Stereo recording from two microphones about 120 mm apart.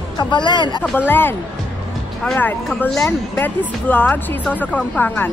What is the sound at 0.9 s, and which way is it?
Speech, 15° left (ahead or behind).